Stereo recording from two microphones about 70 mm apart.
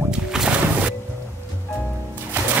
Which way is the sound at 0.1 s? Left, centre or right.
Centre.